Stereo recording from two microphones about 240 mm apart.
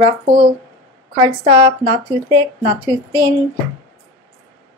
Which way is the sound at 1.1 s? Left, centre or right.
Right.